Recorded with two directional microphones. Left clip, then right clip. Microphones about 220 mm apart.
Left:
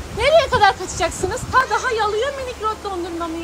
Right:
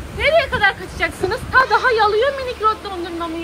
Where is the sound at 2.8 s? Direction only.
20° left (ahead or behind).